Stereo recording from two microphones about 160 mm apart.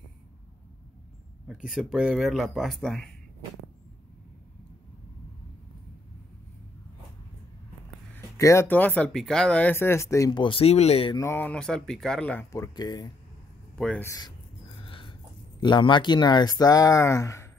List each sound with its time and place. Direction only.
1.7 s speech: 5° right (ahead or behind)
8.4 s speech: 20° left (ahead or behind); by 11.1 s 40° left (ahead or behind)
11.1 s speech: 15° left (ahead or behind)
12.4 s speech: 20° left (ahead or behind)
13.7 s speech: 5° left (ahead or behind)
14.0 s speech: 20° left (ahead or behind)
14.9 s a sound: 30° left (ahead or behind)
15.6 s speech: 30° left (ahead or behind)